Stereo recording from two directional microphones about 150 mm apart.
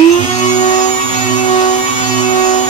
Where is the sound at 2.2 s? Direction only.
50° left (ahead or behind).